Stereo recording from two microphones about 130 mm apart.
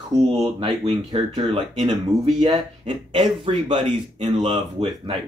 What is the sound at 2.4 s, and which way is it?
Speech, 40° right (ahead or behind).